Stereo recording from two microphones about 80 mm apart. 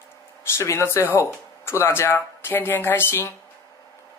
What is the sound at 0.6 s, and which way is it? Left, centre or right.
Speech, left.